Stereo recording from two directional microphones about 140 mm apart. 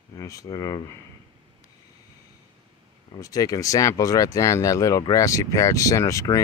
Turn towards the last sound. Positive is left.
turn(degrees=25)  # may be behind; listen again after turning